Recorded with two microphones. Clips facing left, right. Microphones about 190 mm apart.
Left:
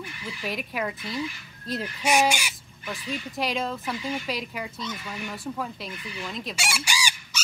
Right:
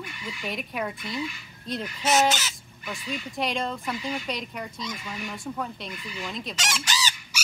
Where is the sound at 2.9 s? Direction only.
Centre (ahead or behind).